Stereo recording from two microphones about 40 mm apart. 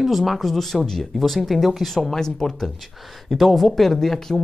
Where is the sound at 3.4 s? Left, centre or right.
Centre.